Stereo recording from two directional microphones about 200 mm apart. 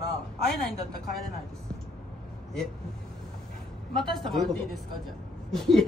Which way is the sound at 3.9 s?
Centre (ahead or behind).